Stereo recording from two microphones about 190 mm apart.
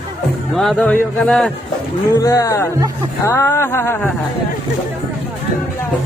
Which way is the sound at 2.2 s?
15° left (ahead or behind).